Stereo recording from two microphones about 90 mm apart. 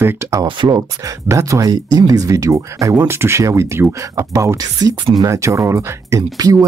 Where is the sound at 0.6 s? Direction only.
50° right (ahead or behind).